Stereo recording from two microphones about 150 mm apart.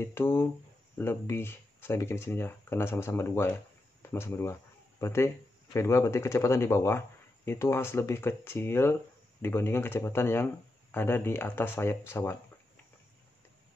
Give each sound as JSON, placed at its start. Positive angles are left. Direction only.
{"t": 0.0, "sound": "speech", "side_deg": 15}